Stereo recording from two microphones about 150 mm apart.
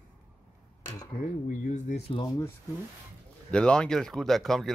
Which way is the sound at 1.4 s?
60° left (ahead or behind).